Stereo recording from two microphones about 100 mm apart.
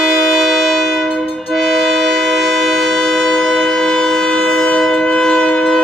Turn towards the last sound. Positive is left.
turn(degrees=5)  # may be behind; listen again after turning